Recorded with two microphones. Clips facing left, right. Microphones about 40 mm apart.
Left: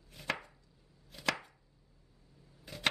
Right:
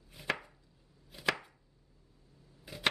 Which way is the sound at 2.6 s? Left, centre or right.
Centre.